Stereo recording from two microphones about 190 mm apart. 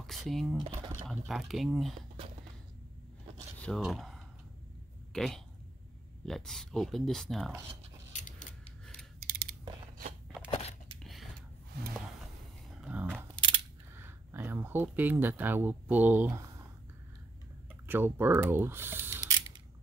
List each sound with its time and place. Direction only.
0.0 s speech: centre (ahead or behind)
2.2 s a sound: 30° right (ahead or behind)
3.5 s speech: 5° left (ahead or behind)
8.1 s creak: 40° left (ahead or behind)
9.2 s mechanisms: 50° right (ahead or behind)
10.5 s crunch: 35° left (ahead or behind)
11.0 s a sound: centre (ahead or behind)
12.8 s a sound: 5° right (ahead or behind)
13.9 s speech: 10° right (ahead or behind)
17.8 s speech: 10° right (ahead or behind)